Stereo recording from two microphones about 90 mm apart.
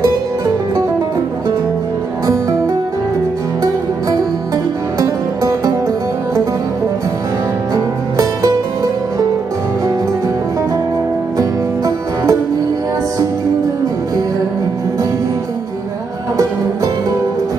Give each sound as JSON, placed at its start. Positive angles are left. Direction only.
{"t": 4.9, "sound": "music", "side_deg": -40}
{"t": 7.7, "sound": "music", "side_deg": -40}
{"t": 11.3, "sound": "music", "side_deg": -40}